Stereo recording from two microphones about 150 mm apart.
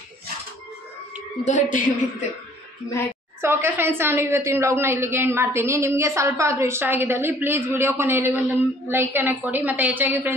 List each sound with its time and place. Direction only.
1.4 s a woman's voice: 55° left (ahead or behind)
2.9 s a child's voice: 15° left (ahead or behind)
3.3 s a woman's voice: 15° right (ahead or behind)